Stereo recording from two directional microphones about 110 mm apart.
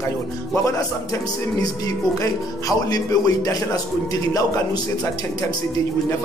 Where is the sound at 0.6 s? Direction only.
30° left (ahead or behind).